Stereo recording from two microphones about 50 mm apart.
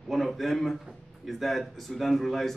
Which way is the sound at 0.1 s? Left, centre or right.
Centre.